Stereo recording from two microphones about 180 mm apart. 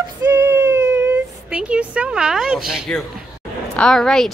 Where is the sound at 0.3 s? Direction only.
15° right (ahead or behind).